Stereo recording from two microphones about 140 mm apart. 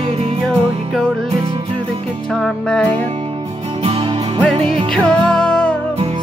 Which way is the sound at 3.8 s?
45° right (ahead or behind).